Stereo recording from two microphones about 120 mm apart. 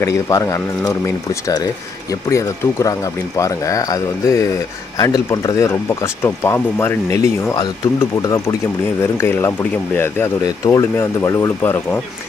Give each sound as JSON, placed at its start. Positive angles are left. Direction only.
{"t": 0.0, "sound": "speech", "side_deg": 25}
{"t": 9.2, "sound": "speech", "side_deg": 20}
{"t": 10.4, "sound": "speech", "side_deg": 30}